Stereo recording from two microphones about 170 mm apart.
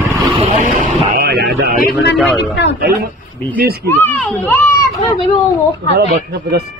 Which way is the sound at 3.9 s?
10° left (ahead or behind).